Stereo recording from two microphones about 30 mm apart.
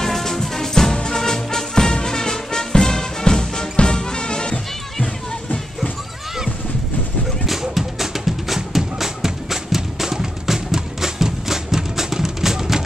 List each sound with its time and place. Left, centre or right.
0.0 s music: centre; by 4.6 s left
7.7 s music: centre